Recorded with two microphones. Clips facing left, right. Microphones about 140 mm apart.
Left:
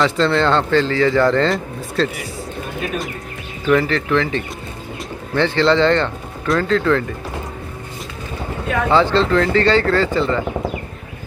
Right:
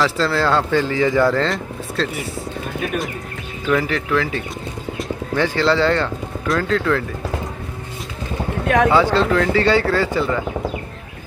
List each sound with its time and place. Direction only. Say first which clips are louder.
0.0 s speech: left 2 dB; 5° right (ahead or behind)
3.8 s speech: left 2 dB; 10° right (ahead or behind)
8.6 s speech: right 5 dB; 75° right (ahead or behind)
8.9 s speech: left 1 dB; 10° right (ahead or behind)